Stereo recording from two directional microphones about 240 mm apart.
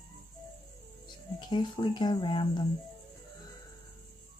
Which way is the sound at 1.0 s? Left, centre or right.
Centre.